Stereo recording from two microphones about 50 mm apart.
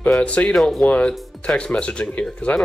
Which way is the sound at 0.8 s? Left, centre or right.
Left.